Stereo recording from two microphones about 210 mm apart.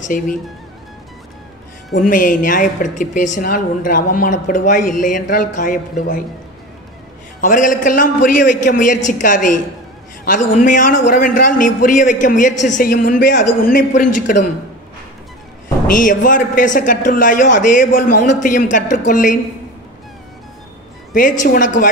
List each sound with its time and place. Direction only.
0.1 s a man's voice: 40° left (ahead or behind)
2.0 s a man's voice: 40° left (ahead or behind)
7.3 s a man's voice: 40° left (ahead or behind)
15.9 s a man's voice: 40° left (ahead or behind)
21.1 s a man's voice: 40° left (ahead or behind)